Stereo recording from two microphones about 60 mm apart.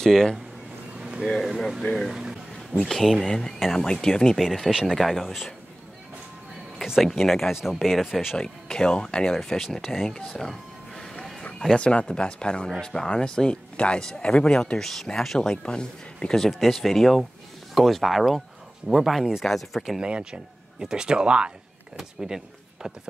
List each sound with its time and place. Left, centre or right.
0.0 s speech: centre
0.9 s a sound: centre
1.2 s speech: centre
7.0 s speech: centre
8.4 s speech: centre
10.0 s speech: centre
11.6 s speech: centre
16.4 s speech: centre
20.0 s speech: centre